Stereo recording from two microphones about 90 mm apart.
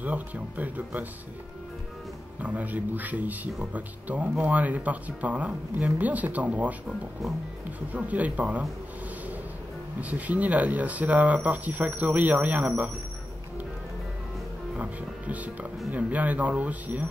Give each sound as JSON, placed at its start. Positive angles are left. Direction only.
{"t": 0.0, "sound": "speech", "side_deg": -20}
{"t": 2.4, "sound": "speech", "side_deg": -15}
{"t": 7.9, "sound": "speech", "side_deg": -15}
{"t": 9.9, "sound": "speech", "side_deg": -15}
{"t": 14.8, "sound": "speech", "side_deg": -15}